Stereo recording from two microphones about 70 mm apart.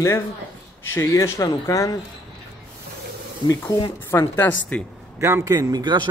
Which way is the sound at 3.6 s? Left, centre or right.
Left.